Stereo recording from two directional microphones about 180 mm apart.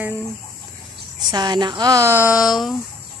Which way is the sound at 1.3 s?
25° right (ahead or behind).